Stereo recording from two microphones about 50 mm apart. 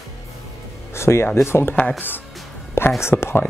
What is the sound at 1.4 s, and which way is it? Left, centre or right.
Speech, left.